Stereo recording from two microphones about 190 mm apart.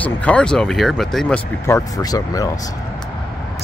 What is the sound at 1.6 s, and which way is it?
Speech, 15° left (ahead or behind).